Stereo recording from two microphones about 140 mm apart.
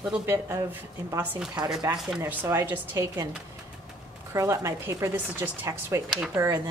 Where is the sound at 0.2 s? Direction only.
15° right (ahead or behind).